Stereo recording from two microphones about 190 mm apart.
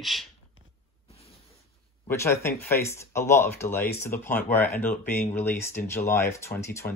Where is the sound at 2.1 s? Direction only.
15° left (ahead or behind).